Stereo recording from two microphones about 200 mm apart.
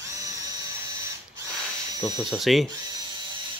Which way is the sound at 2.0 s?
20° right (ahead or behind).